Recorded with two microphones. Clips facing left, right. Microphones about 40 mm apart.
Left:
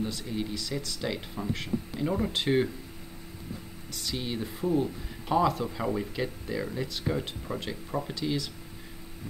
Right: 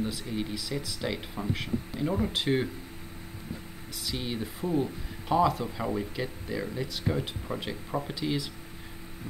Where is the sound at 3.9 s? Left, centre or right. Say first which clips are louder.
Even; centre.